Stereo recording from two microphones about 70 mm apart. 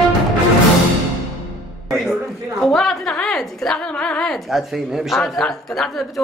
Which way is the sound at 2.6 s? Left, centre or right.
Centre.